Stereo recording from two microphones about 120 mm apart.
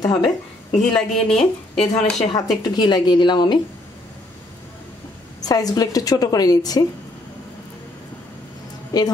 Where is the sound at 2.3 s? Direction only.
35° left (ahead or behind).